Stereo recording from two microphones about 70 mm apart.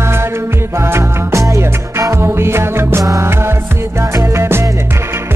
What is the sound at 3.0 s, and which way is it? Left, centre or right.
Music, right.